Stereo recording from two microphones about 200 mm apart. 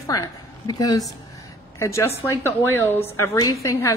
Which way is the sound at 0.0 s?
15° left (ahead or behind).